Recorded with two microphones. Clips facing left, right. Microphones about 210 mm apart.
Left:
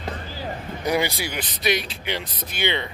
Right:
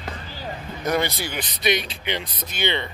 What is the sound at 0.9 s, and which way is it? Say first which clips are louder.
Speech: even; 10° left (ahead or behind).